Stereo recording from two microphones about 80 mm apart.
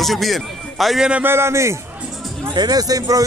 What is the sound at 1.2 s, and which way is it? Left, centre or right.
Speech, right.